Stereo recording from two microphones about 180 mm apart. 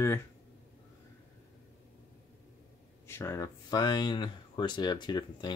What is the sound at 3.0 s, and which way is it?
Speech, 15° left (ahead or behind).